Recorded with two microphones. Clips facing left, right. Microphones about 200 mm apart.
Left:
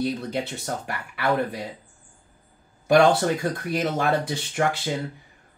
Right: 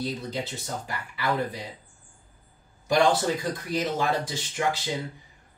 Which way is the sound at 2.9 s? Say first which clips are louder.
Left 4 dB; 60° left (ahead or behind).